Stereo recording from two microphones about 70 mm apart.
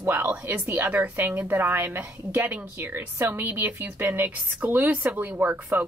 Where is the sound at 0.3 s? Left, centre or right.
Right.